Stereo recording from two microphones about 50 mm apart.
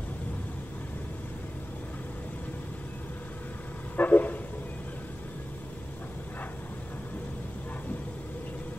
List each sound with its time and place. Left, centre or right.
3.9 s vehicle: left